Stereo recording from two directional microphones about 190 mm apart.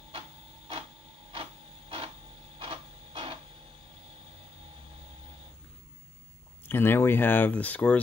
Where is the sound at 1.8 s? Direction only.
30° right (ahead or behind).